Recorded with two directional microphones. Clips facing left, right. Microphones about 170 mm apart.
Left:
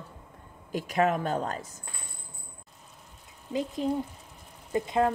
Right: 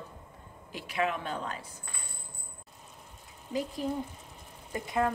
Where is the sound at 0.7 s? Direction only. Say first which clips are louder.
Left 6 dB; 45° left (ahead or behind).